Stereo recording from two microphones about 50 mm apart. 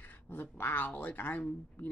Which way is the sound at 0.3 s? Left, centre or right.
Left.